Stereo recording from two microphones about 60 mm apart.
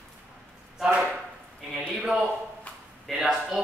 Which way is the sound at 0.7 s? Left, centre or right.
Centre.